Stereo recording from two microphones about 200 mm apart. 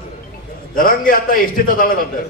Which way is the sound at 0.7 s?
45° left (ahead or behind).